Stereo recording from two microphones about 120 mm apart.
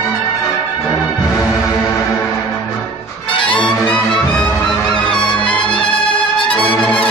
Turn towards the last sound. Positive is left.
turn(degrees=45)  # may be behind; listen again after turning